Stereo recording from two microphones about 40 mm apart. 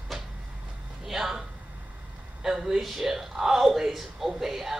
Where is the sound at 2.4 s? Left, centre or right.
Centre.